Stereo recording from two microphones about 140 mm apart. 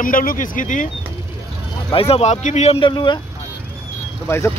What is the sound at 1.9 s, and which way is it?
Speech, 45° left (ahead or behind).